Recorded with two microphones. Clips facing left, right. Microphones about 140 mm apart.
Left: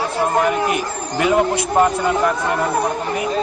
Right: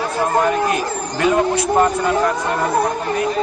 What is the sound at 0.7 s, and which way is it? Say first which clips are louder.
Speech: right 1 dB; 15° left (ahead or behind).